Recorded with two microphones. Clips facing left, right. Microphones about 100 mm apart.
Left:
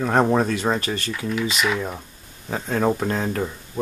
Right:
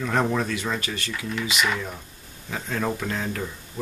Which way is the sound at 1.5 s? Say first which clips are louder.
Right 1 dB; centre (ahead or behind).